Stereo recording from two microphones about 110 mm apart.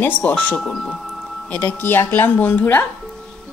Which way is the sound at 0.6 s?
5° left (ahead or behind).